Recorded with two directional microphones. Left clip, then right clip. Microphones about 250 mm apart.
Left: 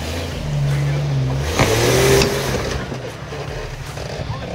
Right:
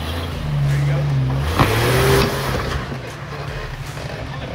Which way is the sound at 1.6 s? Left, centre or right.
Left.